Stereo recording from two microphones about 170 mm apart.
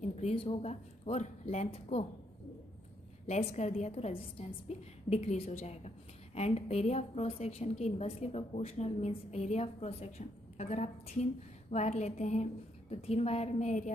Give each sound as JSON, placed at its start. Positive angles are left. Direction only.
{"t": 0.0, "sound": "a woman's voice", "side_deg": 35}
{"t": 3.5, "sound": "a woman's voice", "side_deg": 40}